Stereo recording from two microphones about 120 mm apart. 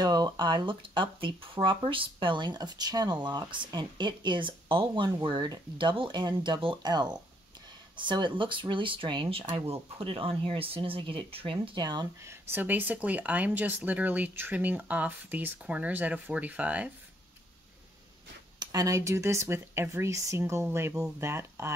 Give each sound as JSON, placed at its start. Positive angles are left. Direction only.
{"t": 0.0, "sound": "speech", "side_deg": -35}
{"t": 9.7, "sound": "speech", "side_deg": -50}
{"t": 12.2, "sound": "speech", "side_deg": -20}
{"t": 18.6, "sound": "speech", "side_deg": -30}